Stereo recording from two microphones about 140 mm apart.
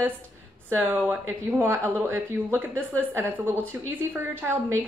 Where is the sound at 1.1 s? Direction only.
15° right (ahead or behind).